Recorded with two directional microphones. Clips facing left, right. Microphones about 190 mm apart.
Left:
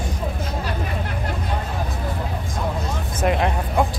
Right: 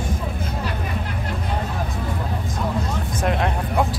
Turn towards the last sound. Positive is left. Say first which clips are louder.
# left 1 dB
turn(degrees=0)  # may be behind; listen again after turning